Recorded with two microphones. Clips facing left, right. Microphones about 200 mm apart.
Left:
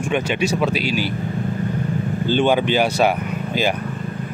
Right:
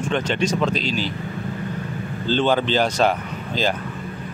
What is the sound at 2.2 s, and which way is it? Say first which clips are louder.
Speech: left 2 dB; 15° left (ahead or behind).